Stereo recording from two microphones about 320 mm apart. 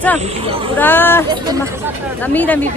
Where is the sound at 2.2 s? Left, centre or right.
Centre.